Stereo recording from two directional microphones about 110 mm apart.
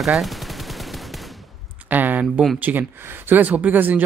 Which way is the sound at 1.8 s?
15° right (ahead or behind).